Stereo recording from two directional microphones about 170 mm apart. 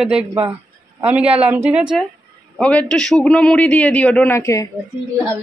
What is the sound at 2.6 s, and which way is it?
A man's voice, 5° left (ahead or behind).